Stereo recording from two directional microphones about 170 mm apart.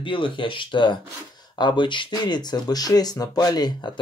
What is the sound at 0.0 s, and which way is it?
Speech, 30° left (ahead or behind).